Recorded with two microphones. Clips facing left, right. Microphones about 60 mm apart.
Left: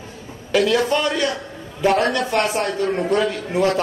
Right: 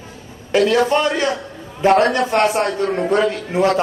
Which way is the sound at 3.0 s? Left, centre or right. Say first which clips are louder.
Right 4 dB; right.